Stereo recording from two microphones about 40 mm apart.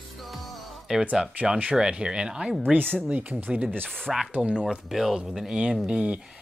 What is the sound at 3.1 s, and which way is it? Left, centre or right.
Speech, right.